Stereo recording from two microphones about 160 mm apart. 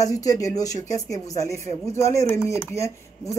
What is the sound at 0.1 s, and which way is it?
Speech, 20° left (ahead or behind).